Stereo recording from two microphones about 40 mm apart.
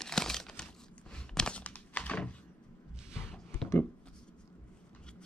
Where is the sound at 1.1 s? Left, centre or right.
Centre.